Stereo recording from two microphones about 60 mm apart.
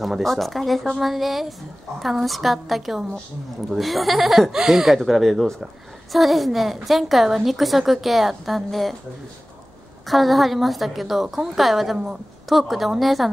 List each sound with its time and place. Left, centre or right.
0.0 s a woman's voice: centre
10.0 s a woman's voice: centre